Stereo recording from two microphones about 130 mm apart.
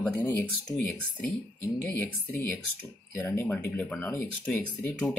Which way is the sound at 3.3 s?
15° left (ahead or behind).